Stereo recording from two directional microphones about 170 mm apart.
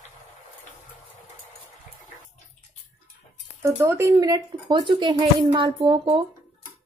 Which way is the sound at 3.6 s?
15° right (ahead or behind).